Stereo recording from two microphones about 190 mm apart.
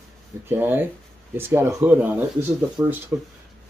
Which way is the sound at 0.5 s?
10° right (ahead or behind).